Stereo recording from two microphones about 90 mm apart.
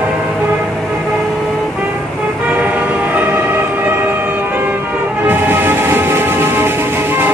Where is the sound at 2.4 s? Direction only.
15° right (ahead or behind).